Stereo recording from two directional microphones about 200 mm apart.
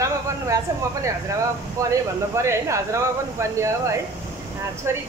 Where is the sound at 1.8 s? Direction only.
15° right (ahead or behind).